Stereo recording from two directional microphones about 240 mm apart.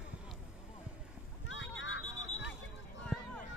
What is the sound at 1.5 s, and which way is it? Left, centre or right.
Vehicle, left.